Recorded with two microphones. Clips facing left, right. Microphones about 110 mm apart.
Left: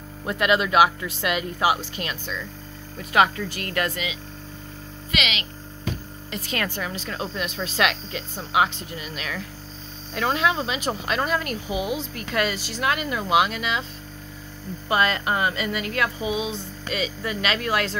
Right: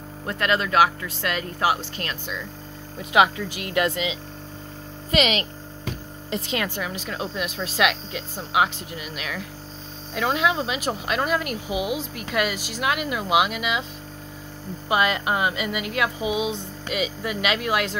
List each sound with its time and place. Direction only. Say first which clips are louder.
0.3 s speech: left 2 dB; 10° left (ahead or behind)
3.0 s speech: right 1 dB; 15° right (ahead or behind)
5.1 s speech: right 7 dB; 40° right (ahead or behind)
6.3 s speech: right 2 dB; 20° right (ahead or behind)
14.9 s speech: even; 10° right (ahead or behind)